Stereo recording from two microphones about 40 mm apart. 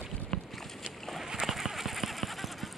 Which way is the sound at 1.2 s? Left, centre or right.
Centre.